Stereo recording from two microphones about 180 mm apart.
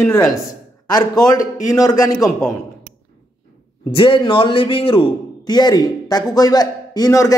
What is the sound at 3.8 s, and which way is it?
A man's voice, 30° left (ahead or behind).